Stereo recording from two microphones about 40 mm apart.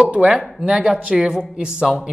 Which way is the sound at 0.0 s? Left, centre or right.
Right.